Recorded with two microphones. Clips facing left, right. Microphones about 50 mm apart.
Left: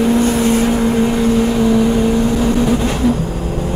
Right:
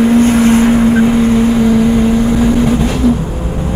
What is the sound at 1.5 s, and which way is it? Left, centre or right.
Vehicle, centre.